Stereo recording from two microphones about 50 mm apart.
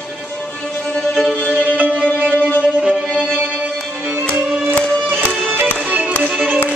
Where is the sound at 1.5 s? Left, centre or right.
Right.